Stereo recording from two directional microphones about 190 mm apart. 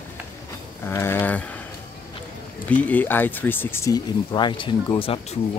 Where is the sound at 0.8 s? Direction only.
10° left (ahead or behind).